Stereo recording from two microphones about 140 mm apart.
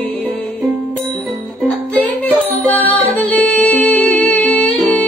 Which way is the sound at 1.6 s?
10° left (ahead or behind).